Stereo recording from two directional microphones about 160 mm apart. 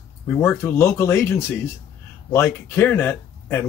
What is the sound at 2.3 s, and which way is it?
Speech, 15° left (ahead or behind).